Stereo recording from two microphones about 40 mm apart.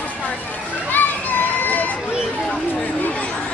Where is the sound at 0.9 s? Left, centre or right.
Left.